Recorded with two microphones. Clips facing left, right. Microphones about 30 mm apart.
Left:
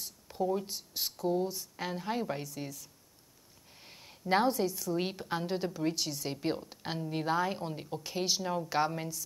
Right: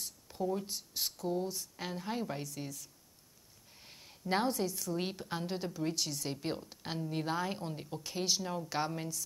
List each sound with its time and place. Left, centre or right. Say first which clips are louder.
0.0 s a woman's voice: left 3 dB; centre